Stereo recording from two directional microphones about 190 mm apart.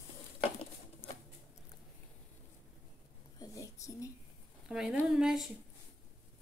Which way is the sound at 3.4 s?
15° left (ahead or behind).